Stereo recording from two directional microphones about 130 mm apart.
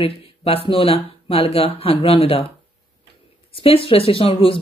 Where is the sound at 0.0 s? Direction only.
45° left (ahead or behind).